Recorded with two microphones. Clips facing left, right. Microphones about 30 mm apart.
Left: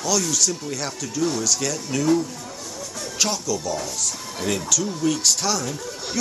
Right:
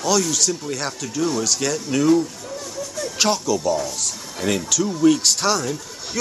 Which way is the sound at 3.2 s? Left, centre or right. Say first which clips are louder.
Right 4 dB; right.